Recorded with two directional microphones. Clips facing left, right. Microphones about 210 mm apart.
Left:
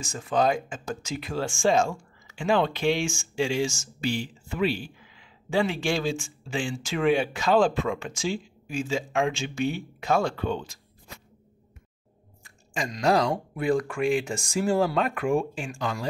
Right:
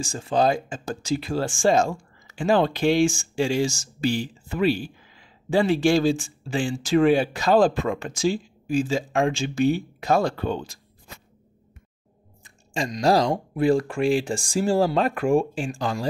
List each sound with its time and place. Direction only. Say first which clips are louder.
0.0 s speech: right 3 dB; 30° right (ahead or behind)
12.4 s speech: right 4 dB; 25° right (ahead or behind)